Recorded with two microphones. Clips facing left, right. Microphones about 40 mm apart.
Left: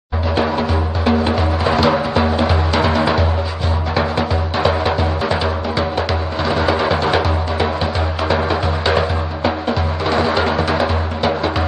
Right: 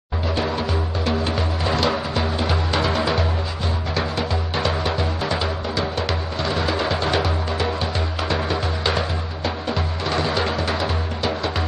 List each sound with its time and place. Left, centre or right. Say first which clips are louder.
0.4 s music: left 7 dB; centre
8.9 s music: left 7 dB; centre